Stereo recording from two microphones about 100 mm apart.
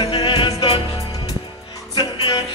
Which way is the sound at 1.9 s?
45° left (ahead or behind).